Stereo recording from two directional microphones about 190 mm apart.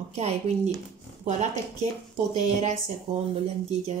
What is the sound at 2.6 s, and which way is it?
Speech, 40° right (ahead or behind).